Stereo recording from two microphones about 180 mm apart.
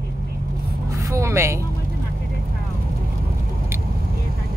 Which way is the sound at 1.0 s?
15° right (ahead or behind).